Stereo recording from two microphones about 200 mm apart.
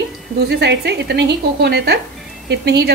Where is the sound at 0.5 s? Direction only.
55° right (ahead or behind).